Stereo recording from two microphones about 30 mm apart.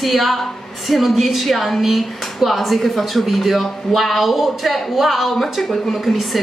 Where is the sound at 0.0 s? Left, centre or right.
Centre.